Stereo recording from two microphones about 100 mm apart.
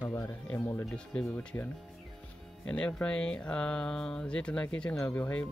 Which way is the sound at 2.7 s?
10° left (ahead or behind).